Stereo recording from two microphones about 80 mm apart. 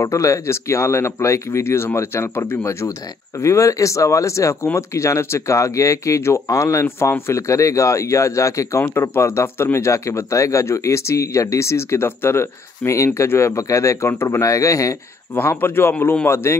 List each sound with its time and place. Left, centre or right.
0.0 s speech: left
15.3 s a man's voice: left